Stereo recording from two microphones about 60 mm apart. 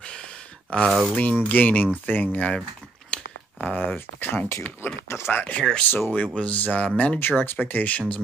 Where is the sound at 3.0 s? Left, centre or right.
Centre.